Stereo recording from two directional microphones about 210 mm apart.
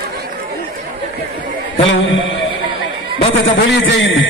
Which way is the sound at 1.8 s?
65° left (ahead or behind).